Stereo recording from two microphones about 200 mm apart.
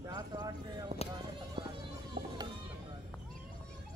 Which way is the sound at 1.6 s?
25° right (ahead or behind).